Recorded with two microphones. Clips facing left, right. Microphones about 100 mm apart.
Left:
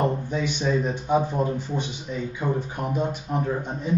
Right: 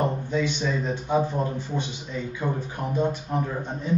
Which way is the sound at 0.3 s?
15° left (ahead or behind).